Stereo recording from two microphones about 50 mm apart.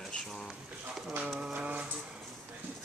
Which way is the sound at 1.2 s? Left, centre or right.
Centre.